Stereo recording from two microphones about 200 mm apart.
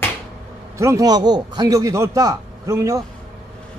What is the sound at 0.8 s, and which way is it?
A man's voice, 15° right (ahead or behind).